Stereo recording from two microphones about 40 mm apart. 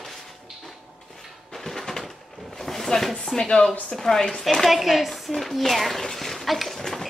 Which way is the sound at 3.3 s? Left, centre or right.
Centre.